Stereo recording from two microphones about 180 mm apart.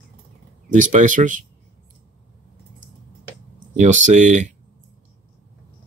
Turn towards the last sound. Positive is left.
turn(degrees=-45)  # may be behind; listen again after turning